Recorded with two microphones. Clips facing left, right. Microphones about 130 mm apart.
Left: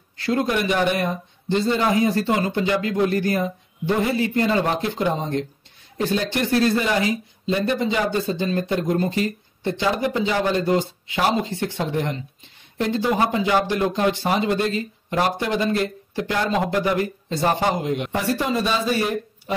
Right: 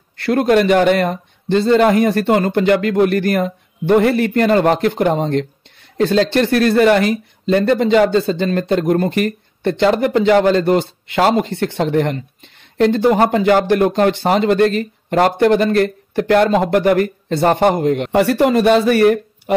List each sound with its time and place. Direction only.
0.2 s speech: 65° right (ahead or behind)